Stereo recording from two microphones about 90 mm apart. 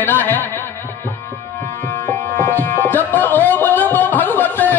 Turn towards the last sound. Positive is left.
turn(degrees=20)  # may be behind; listen again after turning